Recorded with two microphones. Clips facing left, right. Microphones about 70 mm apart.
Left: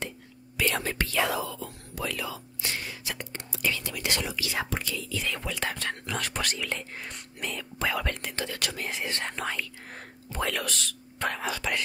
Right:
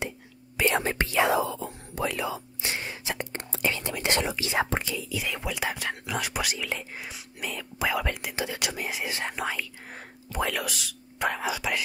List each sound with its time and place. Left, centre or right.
0.6 s whispering: right
4.9 s speech: centre